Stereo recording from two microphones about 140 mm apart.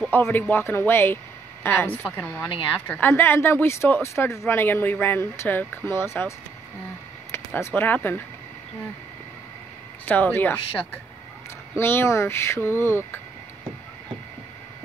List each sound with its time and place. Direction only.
0.1 s speech: 15° left (ahead or behind)
10.0 s speech: 15° left (ahead or behind)
11.7 s speech: 15° left (ahead or behind)